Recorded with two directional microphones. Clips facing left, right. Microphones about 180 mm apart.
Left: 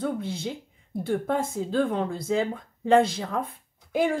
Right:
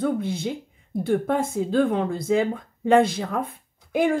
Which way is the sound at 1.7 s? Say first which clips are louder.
Right 4 dB; 55° right (ahead or behind).